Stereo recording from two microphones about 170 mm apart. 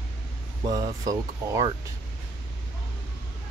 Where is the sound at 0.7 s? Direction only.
20° right (ahead or behind).